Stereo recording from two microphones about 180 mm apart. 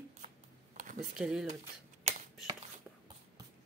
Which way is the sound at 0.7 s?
45° right (ahead or behind).